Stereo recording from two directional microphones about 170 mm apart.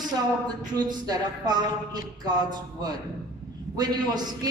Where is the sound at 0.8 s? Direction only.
25° right (ahead or behind).